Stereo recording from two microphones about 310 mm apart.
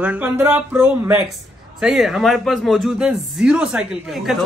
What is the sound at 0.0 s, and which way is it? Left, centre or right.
A man's voice, centre.